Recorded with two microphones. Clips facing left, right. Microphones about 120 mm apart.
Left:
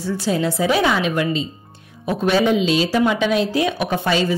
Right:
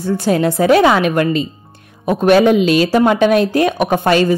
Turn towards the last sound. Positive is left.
turn(degrees=-55)  # may be behind; listen again after turning